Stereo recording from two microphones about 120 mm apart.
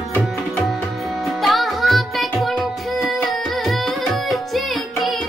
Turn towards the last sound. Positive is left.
turn(degrees=0)  # may be behind; listen again after turning